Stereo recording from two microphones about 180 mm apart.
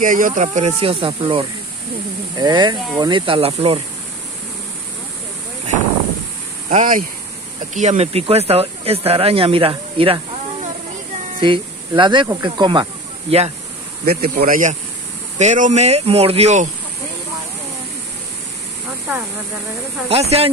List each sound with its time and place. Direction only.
0.0 s speech: 45° right (ahead or behind)
6.7 s speech: 45° right (ahead or behind); by 12.8 s 25° right (ahead or behind)
14.0 s speech: 50° right (ahead or behind)
20.1 s speech: 35° right (ahead or behind)